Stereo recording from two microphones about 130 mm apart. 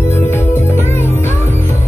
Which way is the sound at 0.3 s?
20° left (ahead or behind).